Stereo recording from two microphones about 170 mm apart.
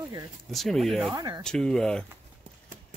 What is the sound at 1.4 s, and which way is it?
Speech, 5° left (ahead or behind).